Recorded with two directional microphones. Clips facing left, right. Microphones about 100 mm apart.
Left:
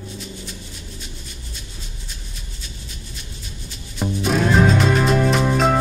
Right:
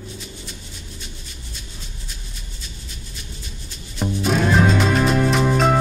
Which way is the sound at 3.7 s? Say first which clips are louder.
Even; centre (ahead or behind).